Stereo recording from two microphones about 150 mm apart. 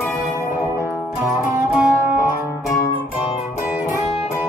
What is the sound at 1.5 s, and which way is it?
Music, 20° right (ahead or behind).